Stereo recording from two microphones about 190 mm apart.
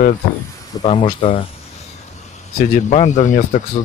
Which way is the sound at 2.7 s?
40° left (ahead or behind).